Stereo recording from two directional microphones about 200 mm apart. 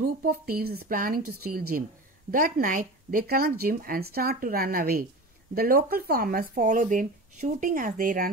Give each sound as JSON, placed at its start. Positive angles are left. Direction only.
{"t": 0.0, "sound": "speech", "side_deg": -50}